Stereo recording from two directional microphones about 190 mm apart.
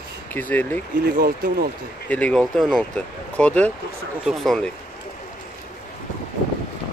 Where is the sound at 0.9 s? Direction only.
50° right (ahead or behind).